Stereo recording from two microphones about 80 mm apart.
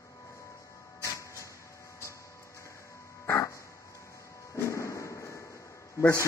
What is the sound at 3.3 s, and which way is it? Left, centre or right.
Music, left.